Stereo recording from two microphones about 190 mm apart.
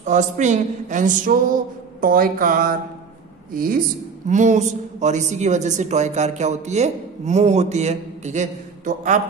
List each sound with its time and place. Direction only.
0.0 s a woman's voice: 40° right (ahead or behind)